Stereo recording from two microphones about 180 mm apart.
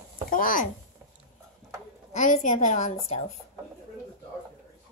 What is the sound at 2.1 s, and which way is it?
A woman's voice, 40° left (ahead or behind).